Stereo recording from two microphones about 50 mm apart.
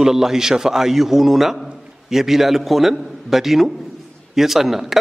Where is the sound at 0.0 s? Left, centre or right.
Centre.